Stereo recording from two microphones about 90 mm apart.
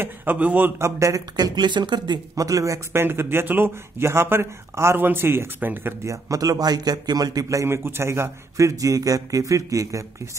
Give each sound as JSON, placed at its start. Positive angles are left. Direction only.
{"t": 0.0, "sound": "speech", "side_deg": -20}
{"t": 1.3, "sound": "speech", "side_deg": -50}
{"t": 2.3, "sound": "a man's voice", "side_deg": -40}
{"t": 2.9, "sound": "speech", "side_deg": -25}
{"t": 6.0, "sound": "a man's voice", "side_deg": -40}